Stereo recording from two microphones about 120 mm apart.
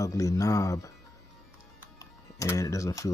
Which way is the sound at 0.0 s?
30° left (ahead or behind).